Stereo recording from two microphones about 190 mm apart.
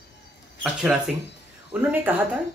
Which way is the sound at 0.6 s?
Centre (ahead or behind).